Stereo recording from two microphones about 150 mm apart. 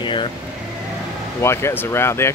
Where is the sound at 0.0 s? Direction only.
35° left (ahead or behind).